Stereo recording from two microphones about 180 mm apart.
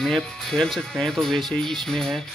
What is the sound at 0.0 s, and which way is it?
Music, centre (ahead or behind).